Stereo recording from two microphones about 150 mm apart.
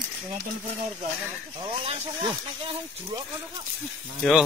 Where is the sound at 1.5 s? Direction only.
35° right (ahead or behind).